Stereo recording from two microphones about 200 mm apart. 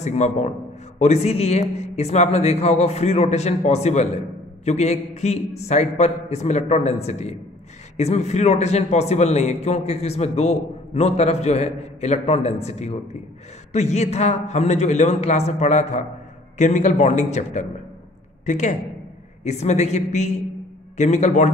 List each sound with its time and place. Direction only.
0.0 s a man's voice: 35° left (ahead or behind)